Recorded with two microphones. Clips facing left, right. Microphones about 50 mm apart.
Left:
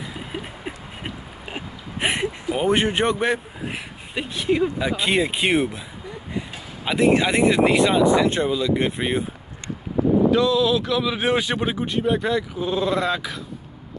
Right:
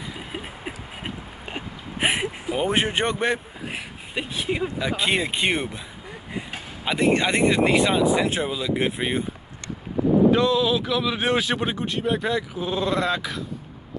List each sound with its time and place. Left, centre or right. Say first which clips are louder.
0.1 s a sound: left 2 dB; centre
4.7 s speech: left 2 dB; centre
6.8 s speech: left 3 dB; centre
10.3 s speech: left 1 dB; right
10.6 s speech: left 2 dB; centre